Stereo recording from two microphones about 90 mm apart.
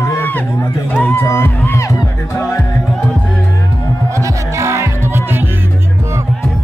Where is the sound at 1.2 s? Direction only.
25° left (ahead or behind).